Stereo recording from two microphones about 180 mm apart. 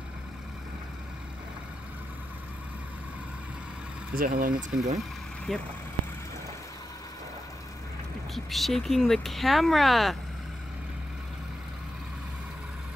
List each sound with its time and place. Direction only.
4.1 s speech: 50° right (ahead or behind)
5.5 s speech: centre (ahead or behind)
8.5 s speech: centre (ahead or behind)